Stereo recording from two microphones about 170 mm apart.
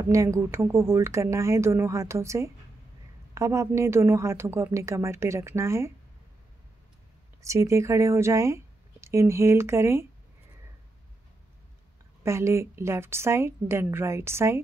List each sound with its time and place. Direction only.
0.0 s speech: 20° right (ahead or behind)
7.4 s speech: 15° right (ahead or behind)
12.2 s speech: 15° right (ahead or behind)